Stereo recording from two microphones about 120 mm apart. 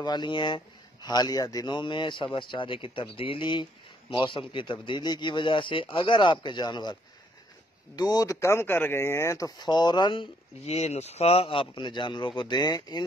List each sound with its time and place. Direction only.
0.0 s speech: 40° left (ahead or behind)
10.6 s speech: 60° left (ahead or behind); by 13.0 s 35° left (ahead or behind)